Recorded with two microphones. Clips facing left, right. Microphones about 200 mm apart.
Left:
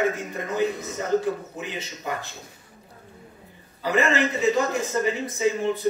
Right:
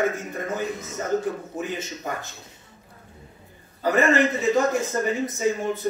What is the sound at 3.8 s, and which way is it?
Speech, 50° right (ahead or behind).